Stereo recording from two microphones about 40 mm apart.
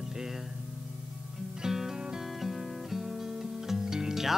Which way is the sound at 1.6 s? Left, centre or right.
Centre.